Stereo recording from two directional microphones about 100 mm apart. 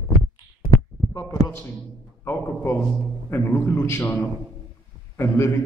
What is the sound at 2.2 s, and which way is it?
A man's voice, 25° left (ahead or behind).